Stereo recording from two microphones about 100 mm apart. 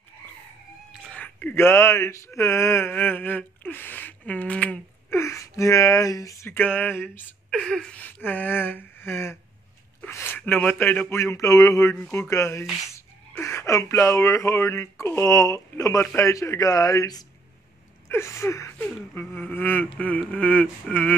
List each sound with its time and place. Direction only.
1.1 s speech: 15° left (ahead or behind)
5.1 s speech: 30° left (ahead or behind)
6.5 s speech: 15° left (ahead or behind)
7.5 s speech: 5° left (ahead or behind); by 17.3 s 40° left (ahead or behind)
18.0 s speech: 25° left (ahead or behind)
20.0 s a sound: 15° left (ahead or behind)